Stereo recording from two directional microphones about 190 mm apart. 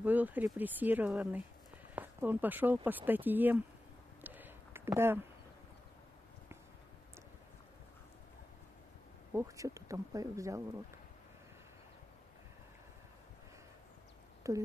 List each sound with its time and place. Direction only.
0.0 s speech: 10° right (ahead or behind)
4.2 s a sound: 10° right (ahead or behind)
9.3 s speech: 15° right (ahead or behind)
14.4 s speech: 15° right (ahead or behind)